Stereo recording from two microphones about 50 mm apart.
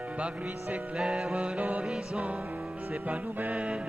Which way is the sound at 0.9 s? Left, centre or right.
Centre.